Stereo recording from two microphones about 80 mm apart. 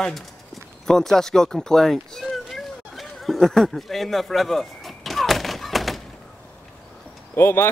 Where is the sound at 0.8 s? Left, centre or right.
Centre.